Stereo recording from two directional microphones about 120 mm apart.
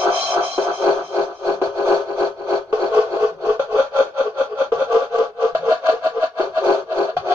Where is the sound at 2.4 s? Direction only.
30° right (ahead or behind).